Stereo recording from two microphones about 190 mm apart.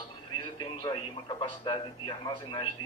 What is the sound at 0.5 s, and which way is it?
A man's voice, 20° left (ahead or behind).